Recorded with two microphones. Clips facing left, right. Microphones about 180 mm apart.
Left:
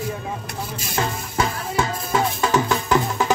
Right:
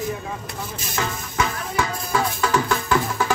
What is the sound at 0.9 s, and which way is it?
Music, 30° left (ahead or behind).